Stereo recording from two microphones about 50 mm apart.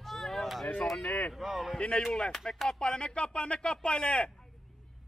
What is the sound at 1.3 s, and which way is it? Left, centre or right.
Speech, centre.